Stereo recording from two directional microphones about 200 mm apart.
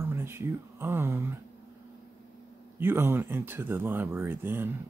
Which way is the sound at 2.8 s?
10° right (ahead or behind).